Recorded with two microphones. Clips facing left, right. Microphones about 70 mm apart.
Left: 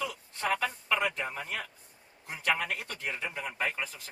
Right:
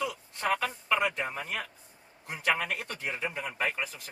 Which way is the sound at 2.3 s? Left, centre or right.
Centre.